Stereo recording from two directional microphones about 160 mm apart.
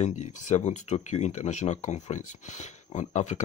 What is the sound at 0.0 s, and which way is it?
Speech, 50° left (ahead or behind).